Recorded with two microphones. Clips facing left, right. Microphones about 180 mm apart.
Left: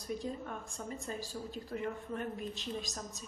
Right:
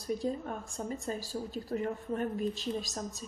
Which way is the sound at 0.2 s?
35° right (ahead or behind).